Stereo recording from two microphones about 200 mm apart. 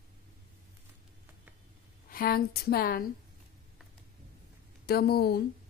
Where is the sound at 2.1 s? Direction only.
45° left (ahead or behind).